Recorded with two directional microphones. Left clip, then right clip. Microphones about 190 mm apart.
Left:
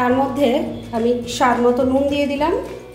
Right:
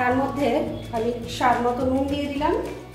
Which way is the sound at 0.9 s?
45° left (ahead or behind).